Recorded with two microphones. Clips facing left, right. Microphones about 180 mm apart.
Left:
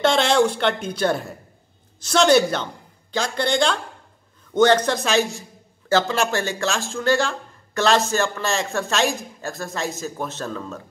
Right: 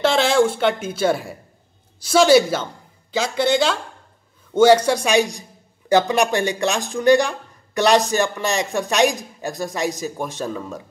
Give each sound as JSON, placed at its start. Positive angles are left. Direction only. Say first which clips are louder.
{"t": 0.0, "sound": "a woman's voice", "louder": "right 1 dB", "side_deg": 0}